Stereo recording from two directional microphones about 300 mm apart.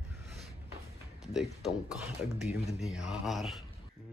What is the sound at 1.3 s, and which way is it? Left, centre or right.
Speech, centre.